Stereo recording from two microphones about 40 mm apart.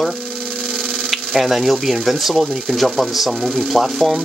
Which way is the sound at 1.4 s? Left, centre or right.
Centre.